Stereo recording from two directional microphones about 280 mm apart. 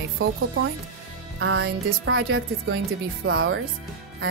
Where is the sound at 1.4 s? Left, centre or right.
Right.